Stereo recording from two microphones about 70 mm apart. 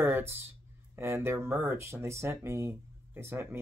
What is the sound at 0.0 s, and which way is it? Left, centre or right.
Speech, right.